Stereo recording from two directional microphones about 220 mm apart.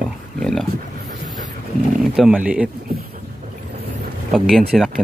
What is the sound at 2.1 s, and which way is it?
Speech, 5° right (ahead or behind).